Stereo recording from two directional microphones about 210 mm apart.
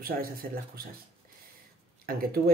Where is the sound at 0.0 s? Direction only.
45° right (ahead or behind).